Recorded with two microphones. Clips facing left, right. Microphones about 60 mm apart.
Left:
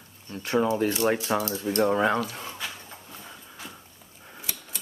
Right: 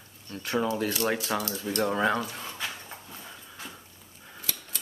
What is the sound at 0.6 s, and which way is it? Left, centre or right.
Speech, left.